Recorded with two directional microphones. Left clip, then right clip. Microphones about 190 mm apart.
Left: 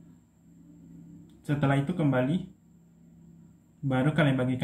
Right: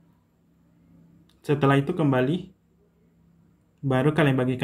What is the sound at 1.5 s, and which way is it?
Speech, 55° right (ahead or behind).